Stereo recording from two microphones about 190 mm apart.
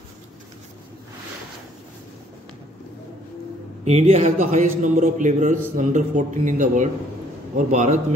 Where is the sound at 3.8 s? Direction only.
35° right (ahead or behind).